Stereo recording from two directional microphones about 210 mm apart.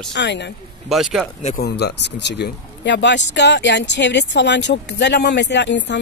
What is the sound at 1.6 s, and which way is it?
Speech, 50° left (ahead or behind).